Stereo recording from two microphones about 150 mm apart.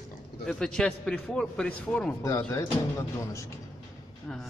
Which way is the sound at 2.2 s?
15° left (ahead or behind).